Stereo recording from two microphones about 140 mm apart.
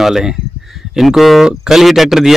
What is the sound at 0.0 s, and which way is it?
A man's voice, 5° right (ahead or behind).